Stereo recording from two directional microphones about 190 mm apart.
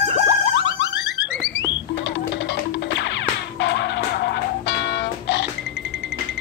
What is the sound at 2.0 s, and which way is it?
Music, 70° left (ahead or behind).